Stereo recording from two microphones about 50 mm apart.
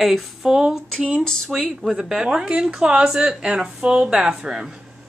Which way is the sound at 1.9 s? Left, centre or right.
Centre.